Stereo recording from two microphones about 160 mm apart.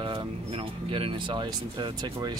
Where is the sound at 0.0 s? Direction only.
35° right (ahead or behind).